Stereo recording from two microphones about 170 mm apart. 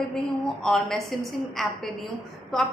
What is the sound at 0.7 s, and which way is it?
A woman's voice, centre (ahead or behind).